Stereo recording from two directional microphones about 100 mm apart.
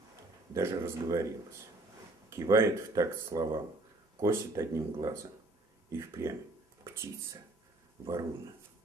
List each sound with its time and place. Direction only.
0.6 s speech: 30° right (ahead or behind)